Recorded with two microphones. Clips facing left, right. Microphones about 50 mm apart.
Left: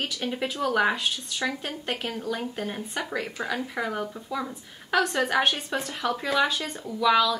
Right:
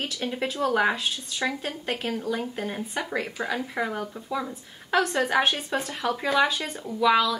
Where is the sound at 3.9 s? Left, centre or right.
Centre.